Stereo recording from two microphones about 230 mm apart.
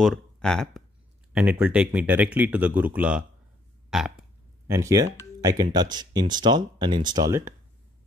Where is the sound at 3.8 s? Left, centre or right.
Centre.